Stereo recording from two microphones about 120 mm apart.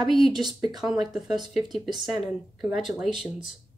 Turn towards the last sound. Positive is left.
turn(degrees=0)  # may be behind; listen again after turning